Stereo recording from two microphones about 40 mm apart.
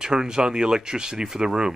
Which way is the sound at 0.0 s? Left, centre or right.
Centre.